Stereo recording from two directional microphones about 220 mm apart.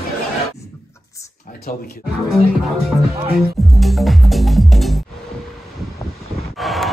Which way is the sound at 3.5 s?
Centre (ahead or behind).